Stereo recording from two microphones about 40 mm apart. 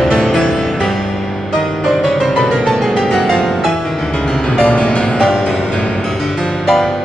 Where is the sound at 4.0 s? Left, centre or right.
Centre.